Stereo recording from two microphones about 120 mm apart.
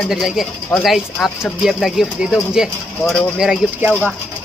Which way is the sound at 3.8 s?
20° right (ahead or behind).